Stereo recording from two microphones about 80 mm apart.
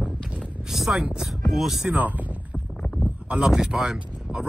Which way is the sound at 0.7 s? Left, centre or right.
Centre.